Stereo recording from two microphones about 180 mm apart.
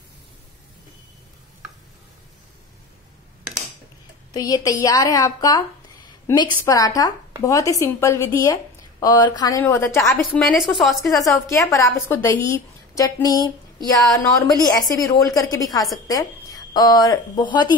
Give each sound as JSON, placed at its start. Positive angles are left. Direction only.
{"t": 4.3, "sound": "a woman's voice", "side_deg": 20}
{"t": 10.2, "sound": "a woman's voice", "side_deg": 0}
{"t": 11.3, "sound": "a woman's voice", "side_deg": 15}